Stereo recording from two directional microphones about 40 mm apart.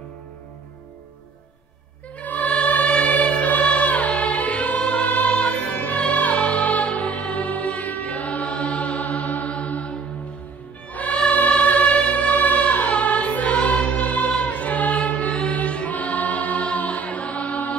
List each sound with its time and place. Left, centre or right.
2.1 s music: left